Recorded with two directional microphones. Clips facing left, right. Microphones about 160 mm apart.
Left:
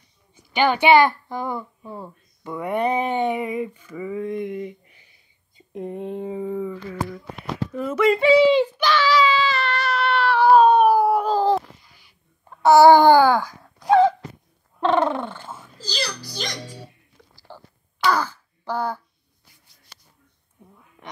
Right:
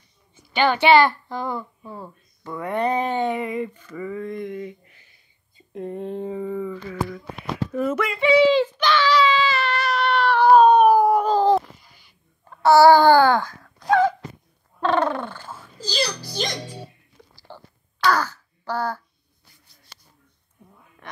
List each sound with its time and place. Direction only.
0.5 s a child's voice: 15° left (ahead or behind)
2.4 s a sound: 10° left (ahead or behind)
5.6 s speech: 20° left (ahead or behind)
7.7 s speech: 5° right (ahead or behind)
8.5 s baby cry: 10° left (ahead or behind)
12.4 s a sound: 15° left (ahead or behind)
15.8 s a child's voice: 20° right (ahead or behind)
17.2 s whispering: 20° right (ahead or behind)
18.0 s wail: 10° left (ahead or behind)
21.0 s a sound: 15° left (ahead or behind)